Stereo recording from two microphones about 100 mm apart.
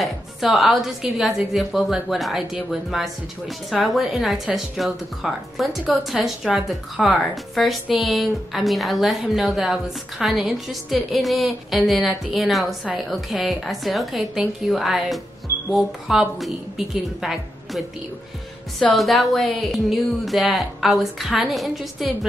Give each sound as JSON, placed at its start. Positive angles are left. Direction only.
{"t": 0.0, "sound": "speech", "side_deg": 0}
{"t": 18.9, "sound": "speech", "side_deg": 0}